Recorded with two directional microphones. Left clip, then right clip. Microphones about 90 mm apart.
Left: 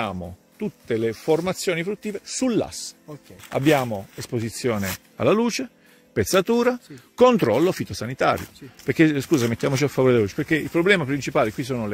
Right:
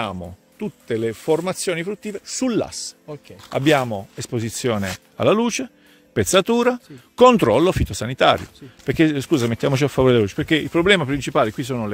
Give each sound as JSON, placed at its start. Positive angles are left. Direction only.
{"t": 0.0, "sound": "speech", "side_deg": -10}
{"t": 3.9, "sound": "speech", "side_deg": -25}
{"t": 5.1, "sound": "speech", "side_deg": -15}
{"t": 7.2, "sound": "speech", "side_deg": -40}
{"t": 8.8, "sound": "speech", "side_deg": -10}
{"t": 9.5, "sound": "speech", "side_deg": -25}